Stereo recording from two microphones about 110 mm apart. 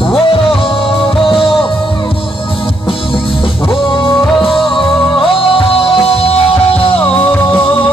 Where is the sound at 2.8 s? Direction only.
55° left (ahead or behind).